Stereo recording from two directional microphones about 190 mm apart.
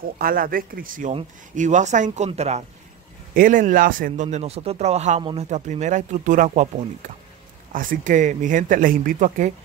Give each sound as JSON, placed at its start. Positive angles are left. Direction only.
{"t": 0.2, "sound": "speech", "side_deg": -50}
{"t": 7.7, "sound": "speech", "side_deg": -45}